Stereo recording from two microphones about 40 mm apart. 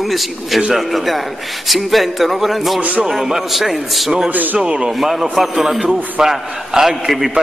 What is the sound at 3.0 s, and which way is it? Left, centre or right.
A man's voice, centre.